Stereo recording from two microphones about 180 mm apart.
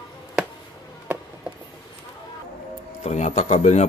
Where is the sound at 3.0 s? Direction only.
40° left (ahead or behind).